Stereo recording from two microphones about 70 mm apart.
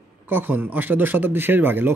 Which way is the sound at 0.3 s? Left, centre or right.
Right.